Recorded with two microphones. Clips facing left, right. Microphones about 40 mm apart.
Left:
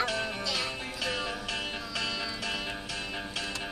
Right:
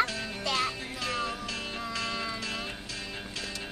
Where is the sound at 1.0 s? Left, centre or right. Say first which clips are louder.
Right 1 dB; left.